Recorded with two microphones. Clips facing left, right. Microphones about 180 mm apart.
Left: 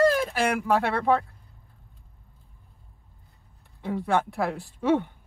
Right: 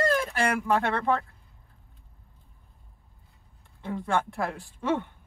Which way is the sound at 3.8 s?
15° left (ahead or behind).